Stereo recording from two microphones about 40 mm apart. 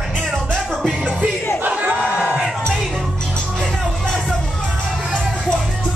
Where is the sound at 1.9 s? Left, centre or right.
Right.